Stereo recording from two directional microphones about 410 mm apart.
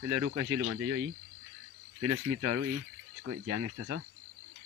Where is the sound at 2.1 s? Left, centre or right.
Right.